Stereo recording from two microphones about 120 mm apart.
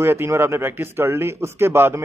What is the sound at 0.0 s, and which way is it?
Speech, 20° right (ahead or behind).